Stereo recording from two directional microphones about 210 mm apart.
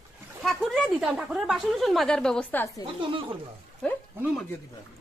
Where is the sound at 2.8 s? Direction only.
25° right (ahead or behind).